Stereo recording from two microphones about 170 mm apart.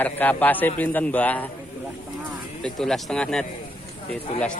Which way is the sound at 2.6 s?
5° left (ahead or behind).